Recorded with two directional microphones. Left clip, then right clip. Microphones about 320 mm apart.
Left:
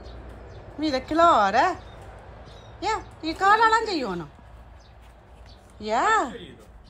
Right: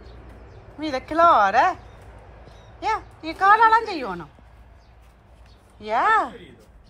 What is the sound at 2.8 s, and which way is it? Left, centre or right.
A child's voice, centre.